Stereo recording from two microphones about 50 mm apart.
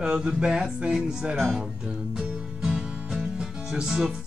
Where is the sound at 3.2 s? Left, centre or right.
Centre.